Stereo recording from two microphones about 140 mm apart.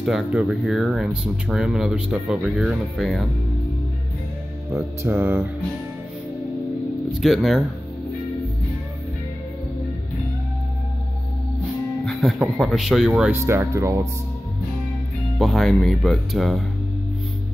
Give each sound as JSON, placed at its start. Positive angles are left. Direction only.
{"t": 0.0, "sound": "speech", "side_deg": -5}
{"t": 4.7, "sound": "music", "side_deg": -15}
{"t": 7.1, "sound": "speech", "side_deg": 0}
{"t": 12.0, "sound": "speech", "side_deg": 0}
{"t": 13.4, "sound": "speech", "side_deg": -20}
{"t": 15.3, "sound": "speech", "side_deg": 0}